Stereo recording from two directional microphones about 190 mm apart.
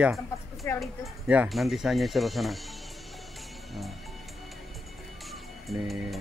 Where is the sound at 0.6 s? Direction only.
10° left (ahead or behind).